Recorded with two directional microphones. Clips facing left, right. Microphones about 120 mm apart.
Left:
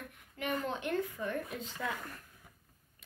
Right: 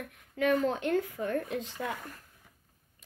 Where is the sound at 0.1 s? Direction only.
90° right.